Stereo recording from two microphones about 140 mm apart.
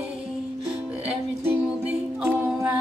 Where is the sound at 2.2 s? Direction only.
10° right (ahead or behind).